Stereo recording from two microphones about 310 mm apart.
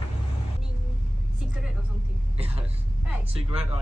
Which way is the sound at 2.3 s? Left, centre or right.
Centre.